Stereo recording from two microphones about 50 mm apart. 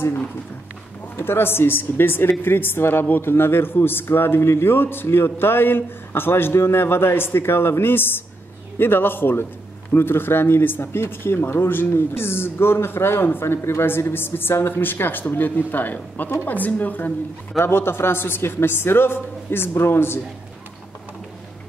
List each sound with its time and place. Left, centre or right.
1.1 s a woman's voice: left
17.6 s a woman's voice: left